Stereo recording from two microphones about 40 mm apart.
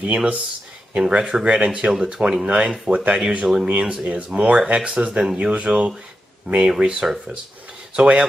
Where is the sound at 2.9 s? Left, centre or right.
Right.